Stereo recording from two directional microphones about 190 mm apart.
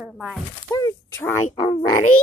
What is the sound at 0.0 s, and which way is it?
Speech, centre (ahead or behind).